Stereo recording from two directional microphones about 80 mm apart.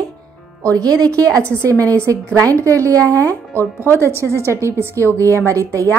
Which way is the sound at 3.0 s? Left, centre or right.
Left.